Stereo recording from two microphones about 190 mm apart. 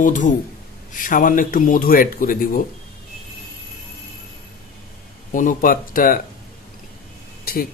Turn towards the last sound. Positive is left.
turn(degrees=50)  # may be behind; listen again after turning